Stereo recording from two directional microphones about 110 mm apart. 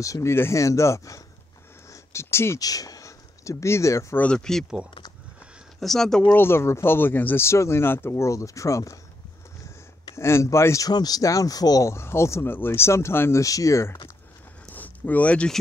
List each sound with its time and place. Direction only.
0.0 s speech: 30° left (ahead or behind)
1.9 s a sound: 25° left (ahead or behind)
2.6 s speech: 35° left (ahead or behind)
4.2 s speech: 5° left (ahead or behind)
5.8 s speech: 5° left (ahead or behind)
6.3 s speech: 20° left (ahead or behind)
10.1 s speech: 25° left (ahead or behind)
14.7 s a sound: 15° left (ahead or behind)